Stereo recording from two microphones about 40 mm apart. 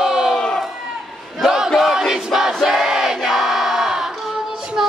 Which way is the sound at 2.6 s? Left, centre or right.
Centre.